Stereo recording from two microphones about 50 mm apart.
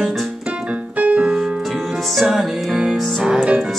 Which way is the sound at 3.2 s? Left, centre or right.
Centre.